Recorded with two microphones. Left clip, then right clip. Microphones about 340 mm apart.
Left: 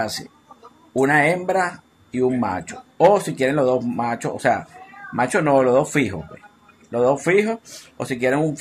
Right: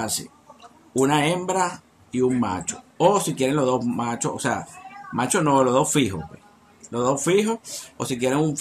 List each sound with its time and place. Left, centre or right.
0.9 s speech: centre